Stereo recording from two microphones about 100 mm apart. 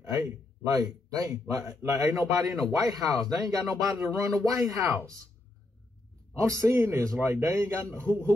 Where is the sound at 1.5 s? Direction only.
30° right (ahead or behind).